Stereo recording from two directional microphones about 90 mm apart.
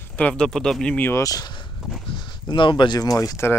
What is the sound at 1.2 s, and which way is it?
Speech, 50° left (ahead or behind).